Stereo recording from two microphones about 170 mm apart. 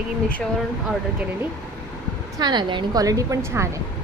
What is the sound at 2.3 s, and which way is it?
A woman's voice, 25° right (ahead or behind).